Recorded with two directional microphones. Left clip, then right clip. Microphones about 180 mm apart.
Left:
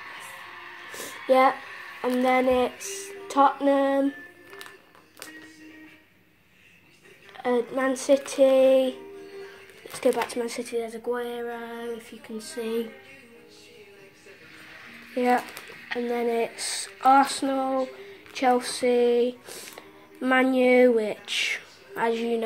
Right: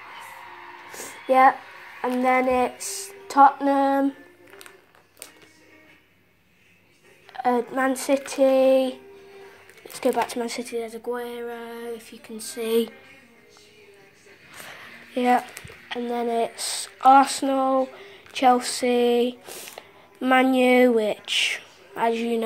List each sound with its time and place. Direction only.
0.9 s a sound: 10° right (ahead or behind)
2.0 s speech: 10° right (ahead or behind)
7.3 s speech: 20° right (ahead or behind)
12.5 s music: 40° right (ahead or behind)
15.1 s speech: 20° right (ahead or behind)
15.9 s speech: 5° right (ahead or behind)